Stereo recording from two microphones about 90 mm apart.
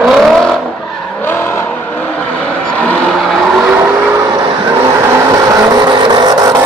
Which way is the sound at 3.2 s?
Centre (ahead or behind).